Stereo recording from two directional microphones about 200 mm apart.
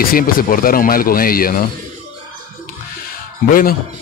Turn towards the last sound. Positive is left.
turn(degrees=45)  # may be behind; listen again after turning